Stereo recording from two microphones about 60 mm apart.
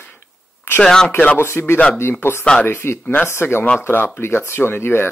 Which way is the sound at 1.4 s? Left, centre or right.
Left.